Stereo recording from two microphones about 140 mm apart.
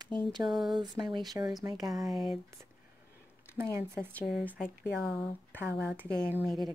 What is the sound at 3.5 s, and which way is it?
Speech, 20° right (ahead or behind).